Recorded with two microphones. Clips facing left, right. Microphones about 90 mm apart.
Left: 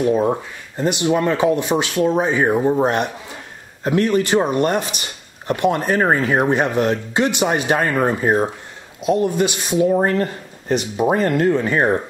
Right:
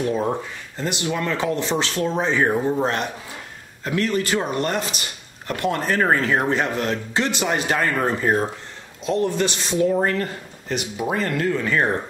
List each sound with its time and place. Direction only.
0.0 s speech: 10° left (ahead or behind)
9.8 s speech: 25° left (ahead or behind)